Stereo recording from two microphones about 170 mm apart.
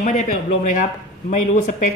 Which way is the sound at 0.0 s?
45° left (ahead or behind).